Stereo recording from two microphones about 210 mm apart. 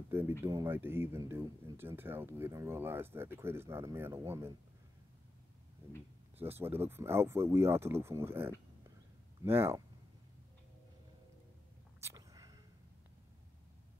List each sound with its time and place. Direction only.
0.1 s speech: 10° right (ahead or behind)
6.3 s speech: 10° right (ahead or behind)
12.0 s a sound: 15° right (ahead or behind)